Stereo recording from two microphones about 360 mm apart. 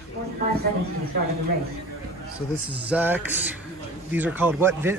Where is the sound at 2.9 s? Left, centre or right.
Centre.